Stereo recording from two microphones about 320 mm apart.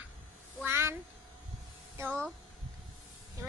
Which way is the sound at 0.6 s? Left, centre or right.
Centre.